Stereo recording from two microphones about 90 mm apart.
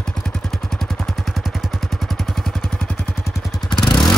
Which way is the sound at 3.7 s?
60° left (ahead or behind).